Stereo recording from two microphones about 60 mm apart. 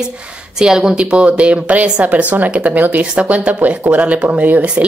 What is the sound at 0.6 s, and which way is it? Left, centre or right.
A woman's voice, centre.